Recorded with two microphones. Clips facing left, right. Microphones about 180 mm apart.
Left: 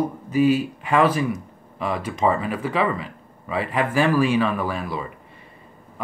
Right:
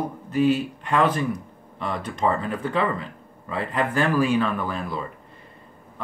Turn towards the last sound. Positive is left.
turn(degrees=5)  # may be behind; listen again after turning